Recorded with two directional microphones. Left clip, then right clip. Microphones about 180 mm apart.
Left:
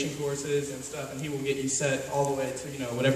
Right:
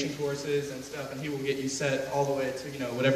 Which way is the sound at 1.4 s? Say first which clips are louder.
Left 2 dB; 15° right (ahead or behind).